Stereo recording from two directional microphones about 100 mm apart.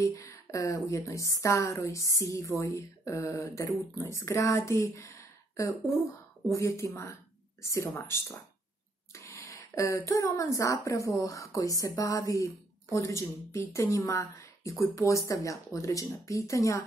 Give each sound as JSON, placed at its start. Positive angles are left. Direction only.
{"t": 0.0, "sound": "speech", "side_deg": 30}